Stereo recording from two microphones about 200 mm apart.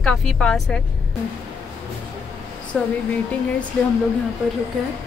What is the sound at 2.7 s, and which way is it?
Speech, 5° left (ahead or behind).